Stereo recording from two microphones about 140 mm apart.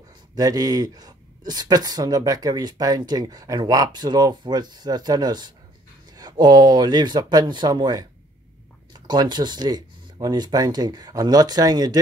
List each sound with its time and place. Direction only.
0.4 s speech: 25° right (ahead or behind)